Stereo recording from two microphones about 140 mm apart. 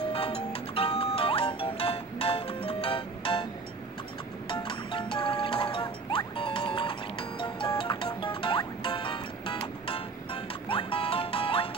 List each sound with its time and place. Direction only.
0.1 s music: 45° left (ahead or behind)
4.5 s music: 40° left (ahead or behind)